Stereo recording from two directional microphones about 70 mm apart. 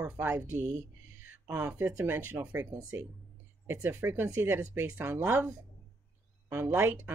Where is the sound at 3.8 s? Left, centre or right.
Right.